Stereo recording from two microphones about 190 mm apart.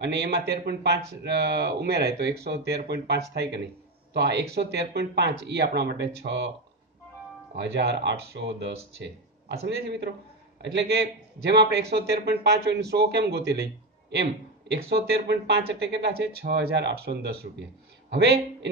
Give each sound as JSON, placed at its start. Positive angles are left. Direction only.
{"t": 0.0, "sound": "a man's voice", "side_deg": -60}
{"t": 7.5, "sound": "a man's voice", "side_deg": -60}